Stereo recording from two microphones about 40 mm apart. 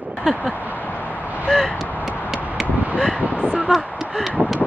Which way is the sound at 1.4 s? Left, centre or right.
Centre.